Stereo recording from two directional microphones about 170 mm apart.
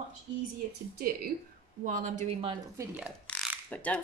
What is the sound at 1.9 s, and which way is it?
Speech, 45° right (ahead or behind).